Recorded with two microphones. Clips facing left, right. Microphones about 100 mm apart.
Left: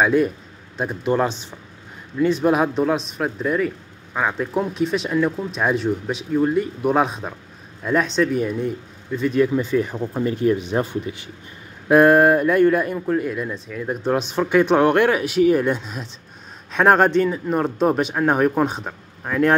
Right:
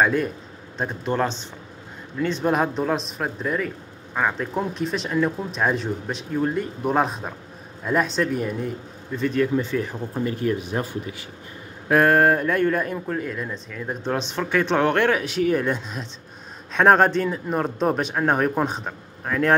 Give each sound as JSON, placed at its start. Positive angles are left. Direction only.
{"t": 0.0, "sound": "speech", "side_deg": 5}
{"t": 9.3, "sound": "speech", "side_deg": 10}